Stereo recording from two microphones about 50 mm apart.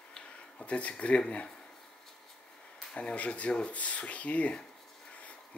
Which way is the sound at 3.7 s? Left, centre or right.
Left.